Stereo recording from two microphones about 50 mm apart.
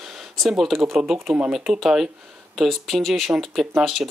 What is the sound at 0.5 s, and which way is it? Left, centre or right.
Speech, centre.